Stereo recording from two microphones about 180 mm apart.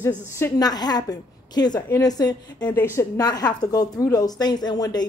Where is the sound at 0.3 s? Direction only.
20° left (ahead or behind).